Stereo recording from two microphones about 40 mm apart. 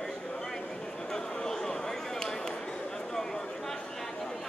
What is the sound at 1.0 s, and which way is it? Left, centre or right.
Chop, centre.